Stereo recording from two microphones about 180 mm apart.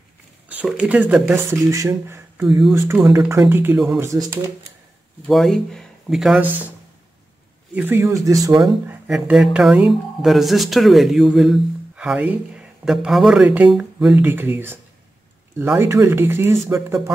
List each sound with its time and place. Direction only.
0.5 s speech: 5° right (ahead or behind)
5.2 s speech: centre (ahead or behind)
7.7 s speech: 10° right (ahead or behind)